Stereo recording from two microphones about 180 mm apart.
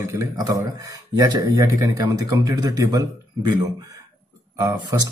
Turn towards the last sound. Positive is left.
turn(degrees=-20)  # may be behind; listen again after turning